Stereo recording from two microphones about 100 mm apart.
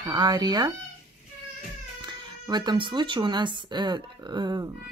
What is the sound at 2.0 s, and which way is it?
Speech, 50° right (ahead or behind).